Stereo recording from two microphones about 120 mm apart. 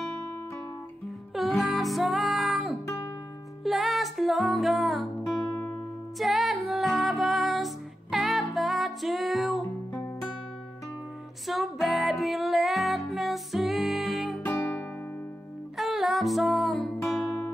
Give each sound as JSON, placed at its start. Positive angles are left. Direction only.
{"t": 1.3, "sound": "music", "side_deg": 0}
{"t": 11.4, "sound": "music", "side_deg": 0}
{"t": 14.4, "sound": "music", "side_deg": 15}
{"t": 15.8, "sound": "music", "side_deg": 0}